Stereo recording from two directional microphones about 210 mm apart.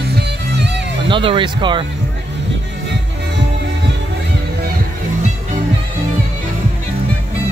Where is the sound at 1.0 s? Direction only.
25° right (ahead or behind).